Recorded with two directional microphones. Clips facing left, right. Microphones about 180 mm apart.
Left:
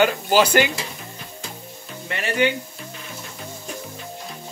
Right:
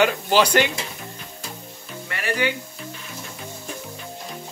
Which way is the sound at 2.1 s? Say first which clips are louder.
Left 3 dB; 25° left (ahead or behind).